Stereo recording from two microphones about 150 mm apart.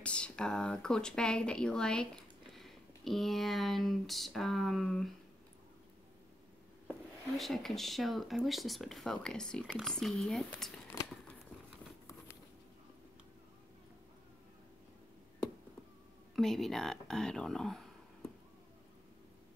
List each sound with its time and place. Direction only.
0.0 s speech: 5° left (ahead or behind)
7.3 s speech: centre (ahead or behind)
10.9 s a sound: 20° left (ahead or behind)
16.3 s speech: centre (ahead or behind)